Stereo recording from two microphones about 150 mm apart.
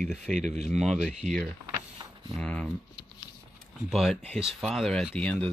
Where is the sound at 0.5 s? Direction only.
50° right (ahead or behind).